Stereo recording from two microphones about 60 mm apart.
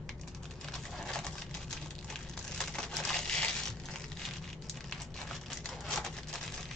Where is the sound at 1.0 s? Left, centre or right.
Centre.